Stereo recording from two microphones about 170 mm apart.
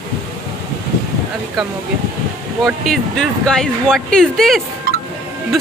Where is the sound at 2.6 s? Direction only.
5° left (ahead or behind).